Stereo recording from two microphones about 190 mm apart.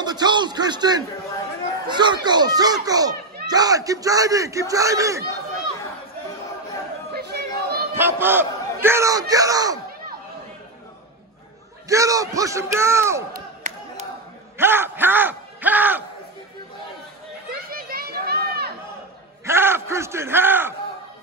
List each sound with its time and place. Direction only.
0.0 s speech: 20° right (ahead or behind)
7.2 s chatter: 60° right (ahead or behind)
7.9 s speech: 10° right (ahead or behind)
11.9 s speech: 15° right (ahead or behind)
13.3 s crowd: 40° right (ahead or behind)
14.6 s yell: 10° right (ahead or behind)
17.5 s a sound: 50° right (ahead or behind)
19.4 s a man's voice: 10° right (ahead or behind)